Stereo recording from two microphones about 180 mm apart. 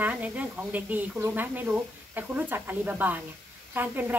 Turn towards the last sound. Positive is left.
turn(degrees=-10)  # may be behind; listen again after turning